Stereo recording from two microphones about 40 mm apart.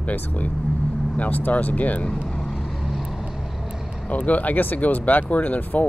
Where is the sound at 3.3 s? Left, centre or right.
Centre.